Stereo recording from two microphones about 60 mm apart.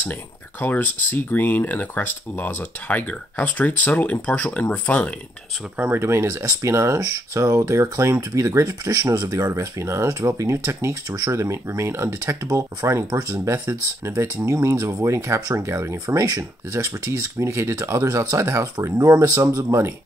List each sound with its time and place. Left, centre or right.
0.0 s speech: left
5.8 s speech: right
6.0 s speech: right
16.3 s speech: right
18.4 s speech: right
19.7 s speech: right